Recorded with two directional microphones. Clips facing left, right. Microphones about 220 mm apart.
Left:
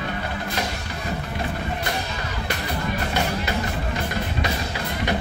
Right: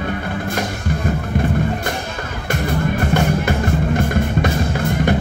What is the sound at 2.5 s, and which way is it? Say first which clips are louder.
Music: right 9 dB; 50° right (ahead or behind).